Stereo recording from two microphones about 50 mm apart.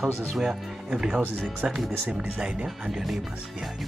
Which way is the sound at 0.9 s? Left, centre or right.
Right.